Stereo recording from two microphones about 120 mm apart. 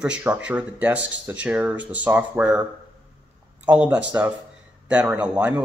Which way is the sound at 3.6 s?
10° right (ahead or behind).